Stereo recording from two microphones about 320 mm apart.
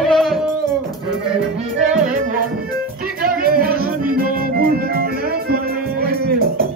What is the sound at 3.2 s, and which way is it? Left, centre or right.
Music, right.